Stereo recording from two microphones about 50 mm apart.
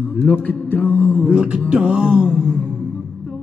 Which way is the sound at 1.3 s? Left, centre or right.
Right.